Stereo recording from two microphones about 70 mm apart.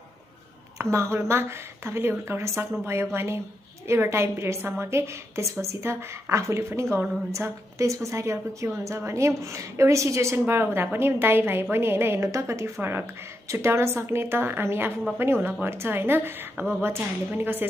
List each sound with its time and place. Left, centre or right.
0.7 s a woman's voice: right
10.3 s a woman's voice: right